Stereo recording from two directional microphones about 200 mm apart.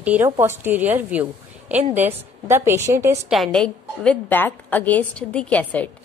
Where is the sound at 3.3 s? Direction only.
Centre (ahead or behind).